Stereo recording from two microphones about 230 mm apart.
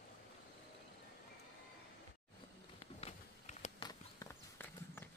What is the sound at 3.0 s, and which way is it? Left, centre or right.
Walk, left.